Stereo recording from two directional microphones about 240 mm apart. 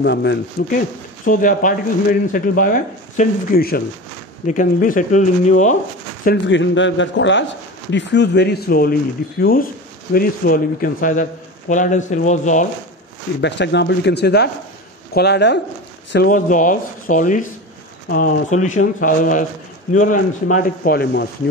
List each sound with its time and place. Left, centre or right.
0.0 s speech: left
6.2 s speech: left
13.4 s speech: left